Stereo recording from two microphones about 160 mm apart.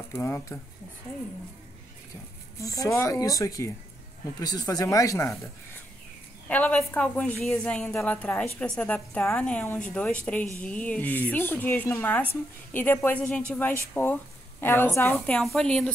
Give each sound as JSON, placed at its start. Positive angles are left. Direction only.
{"t": 0.1, "sound": "speech", "side_deg": 15}
{"t": 2.6, "sound": "speech", "side_deg": 20}
{"t": 6.5, "sound": "a woman's voice", "side_deg": 10}